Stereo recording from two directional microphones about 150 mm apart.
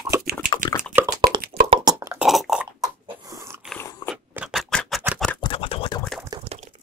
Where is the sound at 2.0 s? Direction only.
15° right (ahead or behind).